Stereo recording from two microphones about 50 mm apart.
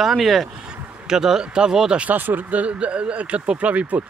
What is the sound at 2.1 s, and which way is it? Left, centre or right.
Speech, right.